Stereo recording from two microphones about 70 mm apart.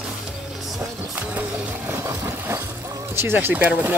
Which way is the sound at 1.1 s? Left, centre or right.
Right.